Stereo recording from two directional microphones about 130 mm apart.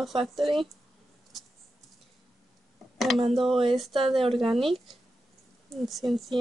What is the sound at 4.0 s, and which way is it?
Speech, 45° right (ahead or behind).